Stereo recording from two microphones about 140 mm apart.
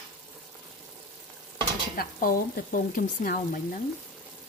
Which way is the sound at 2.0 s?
90° left.